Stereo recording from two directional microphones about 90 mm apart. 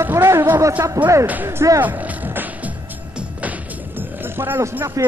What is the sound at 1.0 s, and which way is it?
Speech, 40° right (ahead or behind).